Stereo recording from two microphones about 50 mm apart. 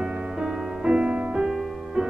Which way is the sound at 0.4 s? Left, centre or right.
Centre.